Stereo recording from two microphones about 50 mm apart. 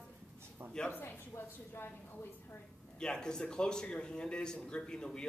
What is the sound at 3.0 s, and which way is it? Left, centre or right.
A man's voice, centre.